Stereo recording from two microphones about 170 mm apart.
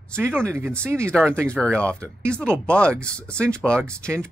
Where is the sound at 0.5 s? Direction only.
15° right (ahead or behind).